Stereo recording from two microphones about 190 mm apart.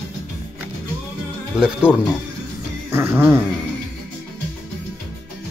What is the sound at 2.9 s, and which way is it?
Music, 10° right (ahead or behind).